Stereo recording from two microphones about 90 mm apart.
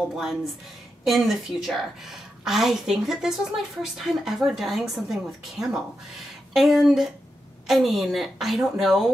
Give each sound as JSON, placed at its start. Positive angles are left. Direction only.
{"t": 0.1, "sound": "a woman's voice", "side_deg": -5}